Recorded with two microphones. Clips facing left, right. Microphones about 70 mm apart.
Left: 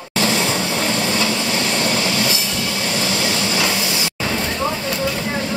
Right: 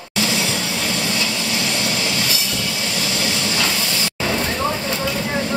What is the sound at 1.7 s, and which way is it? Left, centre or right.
Train, left.